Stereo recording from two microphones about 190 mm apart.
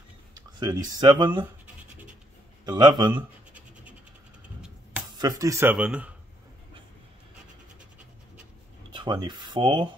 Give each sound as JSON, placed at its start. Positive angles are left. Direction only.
{"t": 0.6, "sound": "speech", "side_deg": -20}
{"t": 2.6, "sound": "speech", "side_deg": -20}
{"t": 4.6, "sound": "a sound", "side_deg": -5}
{"t": 5.1, "sound": "a man's voice", "side_deg": -20}
{"t": 8.9, "sound": "speech", "side_deg": -25}